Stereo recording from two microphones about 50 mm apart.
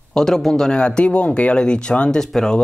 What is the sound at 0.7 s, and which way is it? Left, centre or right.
Speech, left.